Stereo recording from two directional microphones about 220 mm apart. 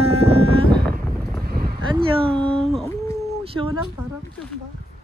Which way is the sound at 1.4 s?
45° right (ahead or behind).